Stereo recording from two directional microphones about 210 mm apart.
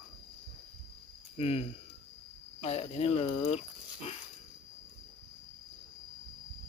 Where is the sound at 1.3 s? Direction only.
30° left (ahead or behind).